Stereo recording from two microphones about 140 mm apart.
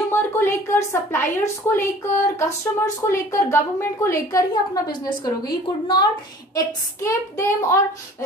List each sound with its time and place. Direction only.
0.1 s a woman's voice: 20° left (ahead or behind)
6.5 s a woman's voice: 20° left (ahead or behind)